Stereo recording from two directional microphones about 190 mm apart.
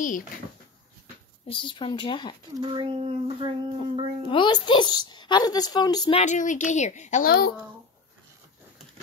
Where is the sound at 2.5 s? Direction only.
25° right (ahead or behind).